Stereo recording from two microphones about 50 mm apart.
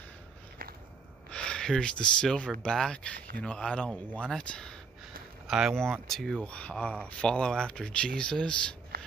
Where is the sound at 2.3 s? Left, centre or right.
Centre.